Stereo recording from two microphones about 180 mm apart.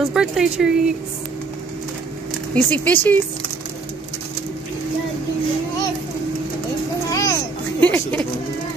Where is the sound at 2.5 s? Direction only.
10° left (ahead or behind).